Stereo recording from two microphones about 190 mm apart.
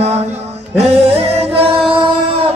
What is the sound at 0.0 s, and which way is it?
Music, 35° right (ahead or behind).